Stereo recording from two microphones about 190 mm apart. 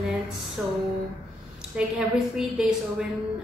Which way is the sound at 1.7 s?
5° right (ahead or behind).